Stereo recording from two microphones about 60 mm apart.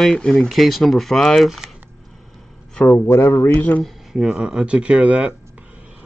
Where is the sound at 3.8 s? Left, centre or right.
Centre.